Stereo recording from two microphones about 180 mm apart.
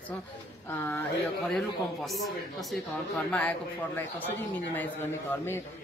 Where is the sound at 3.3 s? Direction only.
5° left (ahead or behind).